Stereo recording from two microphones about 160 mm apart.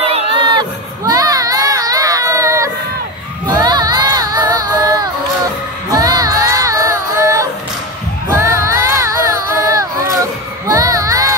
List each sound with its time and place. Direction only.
0.0 s crowd: 40° right (ahead or behind)
5.9 s music: 25° right (ahead or behind)
8.4 s a sound: 20° right (ahead or behind)
10.7 s children shouting: 25° right (ahead or behind)